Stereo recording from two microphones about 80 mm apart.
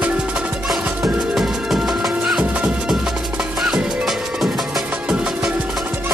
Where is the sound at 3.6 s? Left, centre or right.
Centre.